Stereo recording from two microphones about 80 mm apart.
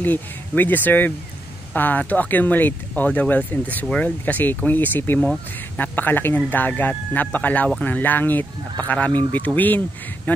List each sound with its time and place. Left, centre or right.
0.0 s speech: left